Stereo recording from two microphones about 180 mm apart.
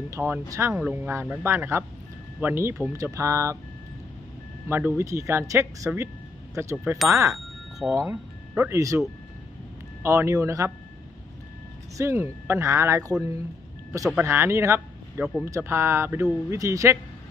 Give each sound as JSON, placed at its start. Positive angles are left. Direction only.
{"t": 0.1, "sound": "speech", "side_deg": -15}
{"t": 4.6, "sound": "speech", "side_deg": -10}
{"t": 10.0, "sound": "speech", "side_deg": -15}
{"t": 12.0, "sound": "speech", "side_deg": -15}